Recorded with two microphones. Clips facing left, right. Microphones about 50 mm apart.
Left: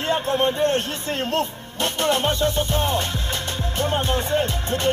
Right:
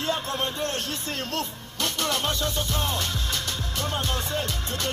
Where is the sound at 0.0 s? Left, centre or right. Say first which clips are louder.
Left 7 dB; left.